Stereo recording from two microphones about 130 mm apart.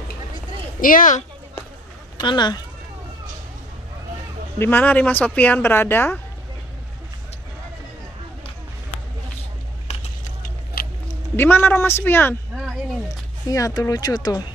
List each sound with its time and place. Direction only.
0.7 s a woman's voice: 90° left
2.1 s speech: 35° left (ahead or behind)
4.6 s speech: 15° left (ahead or behind)
11.3 s speech: 15° left (ahead or behind)
13.5 s speech: 25° left (ahead or behind)